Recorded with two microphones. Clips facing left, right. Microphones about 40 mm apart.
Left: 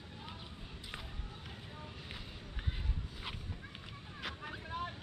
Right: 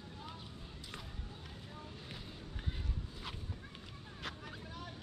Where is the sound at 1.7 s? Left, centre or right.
Left.